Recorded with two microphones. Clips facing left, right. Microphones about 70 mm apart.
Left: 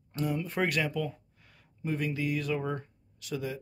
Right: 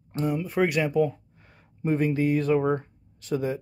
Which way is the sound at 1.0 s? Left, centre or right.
Right.